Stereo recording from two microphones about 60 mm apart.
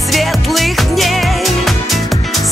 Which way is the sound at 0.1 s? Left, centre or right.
Centre.